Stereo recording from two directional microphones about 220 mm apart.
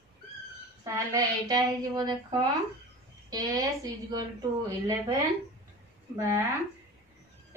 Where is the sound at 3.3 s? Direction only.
15° right (ahead or behind).